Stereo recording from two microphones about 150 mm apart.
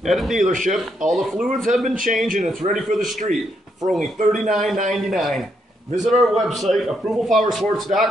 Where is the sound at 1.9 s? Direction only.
65° right (ahead or behind).